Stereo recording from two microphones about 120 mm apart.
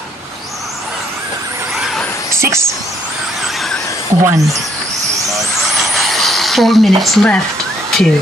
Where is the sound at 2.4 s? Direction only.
25° right (ahead or behind).